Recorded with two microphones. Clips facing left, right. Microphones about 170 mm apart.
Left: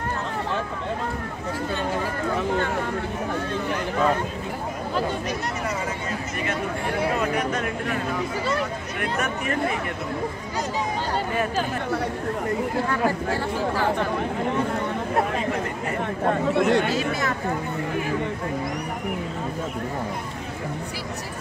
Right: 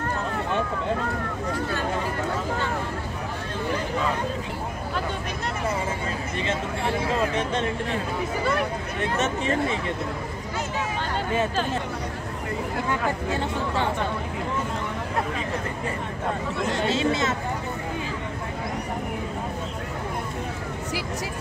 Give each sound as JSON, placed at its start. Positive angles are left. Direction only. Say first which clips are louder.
{"t": 7.3, "sound": "speech", "louder": "even", "side_deg": -25}
{"t": 9.2, "sound": "speech", "louder": "right 1 dB", "side_deg": -25}
{"t": 13.3, "sound": "speech", "louder": "left 2 dB", "side_deg": -20}
{"t": 16.3, "sound": "speech", "louder": "left 7 dB", "side_deg": 65}
{"t": 16.8, "sound": "speech", "louder": "right 1 dB", "side_deg": -25}